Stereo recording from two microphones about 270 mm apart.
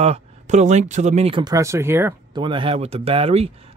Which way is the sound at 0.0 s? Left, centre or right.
Right.